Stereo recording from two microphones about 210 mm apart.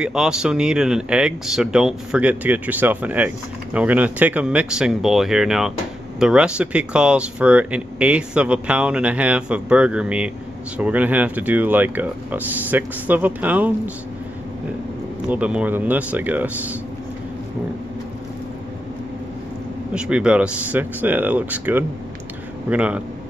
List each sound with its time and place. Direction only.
0.0 s speech: 5° right (ahead or behind)
15.2 s speech: 5° right (ahead or behind)
19.9 s speech: 5° right (ahead or behind)